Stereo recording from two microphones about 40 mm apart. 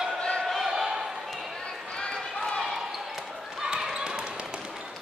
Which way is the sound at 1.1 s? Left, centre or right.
Centre.